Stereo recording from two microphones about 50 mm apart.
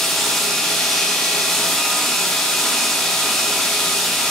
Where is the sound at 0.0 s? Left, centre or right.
Centre.